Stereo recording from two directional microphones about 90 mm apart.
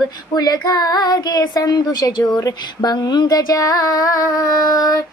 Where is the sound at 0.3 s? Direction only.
45° left (ahead or behind).